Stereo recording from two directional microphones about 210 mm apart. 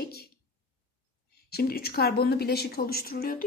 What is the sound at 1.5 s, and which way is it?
A woman's voice, 50° left (ahead or behind).